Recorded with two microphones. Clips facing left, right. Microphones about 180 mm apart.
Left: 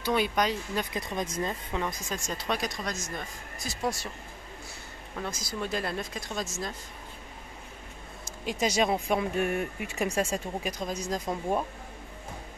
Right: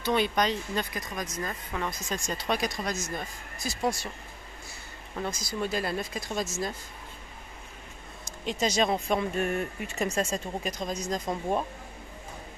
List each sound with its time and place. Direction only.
0.0 s speech: 5° left (ahead or behind)
0.9 s speech: 25° left (ahead or behind)
2.1 s speech: 5° left (ahead or behind)
5.3 s speech: centre (ahead or behind)
8.3 s speech: 10° left (ahead or behind)